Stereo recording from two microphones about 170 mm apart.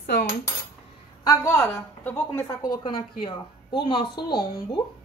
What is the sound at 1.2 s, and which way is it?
A woman's voice, 15° left (ahead or behind).